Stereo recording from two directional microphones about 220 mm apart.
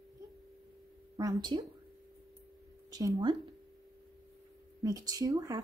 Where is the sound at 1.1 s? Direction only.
15° right (ahead or behind).